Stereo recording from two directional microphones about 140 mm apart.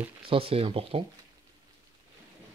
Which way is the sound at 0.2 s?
40° right (ahead or behind).